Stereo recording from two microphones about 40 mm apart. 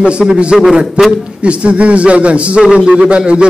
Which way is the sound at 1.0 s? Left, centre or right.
Right.